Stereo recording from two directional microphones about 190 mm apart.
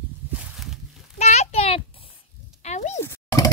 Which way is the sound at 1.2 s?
35° left (ahead or behind).